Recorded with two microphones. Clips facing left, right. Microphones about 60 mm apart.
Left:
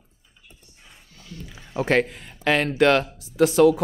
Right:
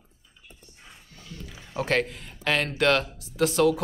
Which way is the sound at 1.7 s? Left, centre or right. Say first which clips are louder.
Left 4 dB; left.